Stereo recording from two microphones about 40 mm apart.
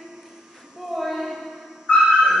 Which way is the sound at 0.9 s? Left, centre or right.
Centre.